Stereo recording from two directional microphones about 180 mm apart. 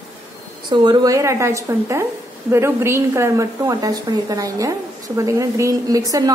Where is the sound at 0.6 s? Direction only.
25° right (ahead or behind).